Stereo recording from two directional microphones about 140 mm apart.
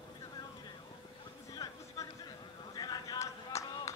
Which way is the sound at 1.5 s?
25° left (ahead or behind).